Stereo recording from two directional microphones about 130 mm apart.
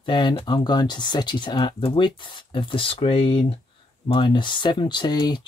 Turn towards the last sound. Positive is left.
turn(degrees=35)  # may be behind; listen again after turning